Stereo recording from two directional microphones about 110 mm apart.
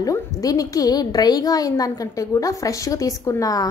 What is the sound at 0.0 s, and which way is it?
Speech, 30° left (ahead or behind).